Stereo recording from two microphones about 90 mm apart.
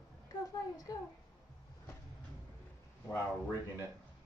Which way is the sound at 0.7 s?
40° left (ahead or behind).